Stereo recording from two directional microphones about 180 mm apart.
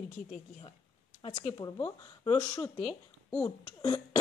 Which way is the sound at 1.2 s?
30° left (ahead or behind).